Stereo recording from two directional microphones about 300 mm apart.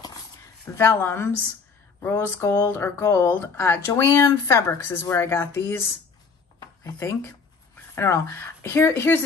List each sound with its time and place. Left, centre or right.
0.7 s speech: centre